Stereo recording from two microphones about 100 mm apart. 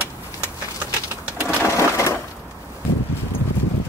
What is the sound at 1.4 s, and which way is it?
Sewing machine, 30° left (ahead or behind).